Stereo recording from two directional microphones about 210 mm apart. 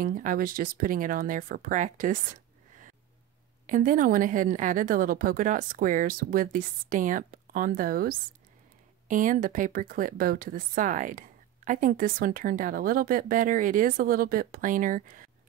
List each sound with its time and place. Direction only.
0.0 s a woman's voice: 40° right (ahead or behind)
3.6 s a woman's voice: 40° right (ahead or behind)